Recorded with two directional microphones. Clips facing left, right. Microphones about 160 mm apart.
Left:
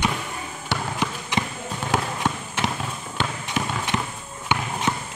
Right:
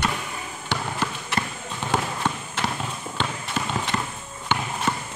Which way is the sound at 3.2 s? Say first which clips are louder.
Left 2 dB; 15° left (ahead or behind).